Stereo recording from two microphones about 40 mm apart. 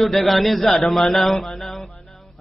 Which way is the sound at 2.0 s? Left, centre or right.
Centre.